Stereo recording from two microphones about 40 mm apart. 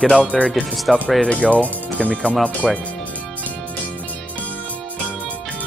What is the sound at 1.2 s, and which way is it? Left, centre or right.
Speech, left.